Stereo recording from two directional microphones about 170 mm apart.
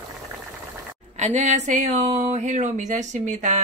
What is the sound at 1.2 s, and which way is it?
Speech, 45° right (ahead or behind).